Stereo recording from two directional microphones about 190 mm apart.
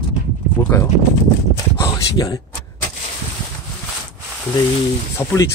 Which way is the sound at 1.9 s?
20° left (ahead or behind).